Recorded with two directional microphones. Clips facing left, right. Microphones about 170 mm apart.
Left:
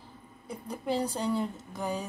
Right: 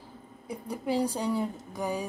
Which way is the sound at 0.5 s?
10° right (ahead or behind).